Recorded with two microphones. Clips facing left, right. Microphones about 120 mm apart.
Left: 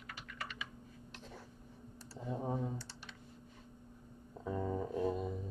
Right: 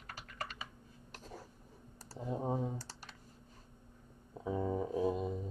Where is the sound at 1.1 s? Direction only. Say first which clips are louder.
Right 3 dB; 40° right (ahead or behind).